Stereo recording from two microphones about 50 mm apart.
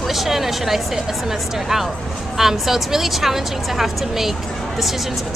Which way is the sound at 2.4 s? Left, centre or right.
Centre.